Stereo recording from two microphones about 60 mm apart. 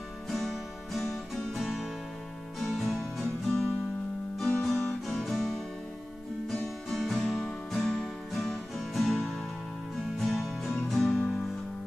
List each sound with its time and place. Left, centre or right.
0.3 s music: centre
4.6 s guitar: centre
6.5 s music: centre
11.1 s music: centre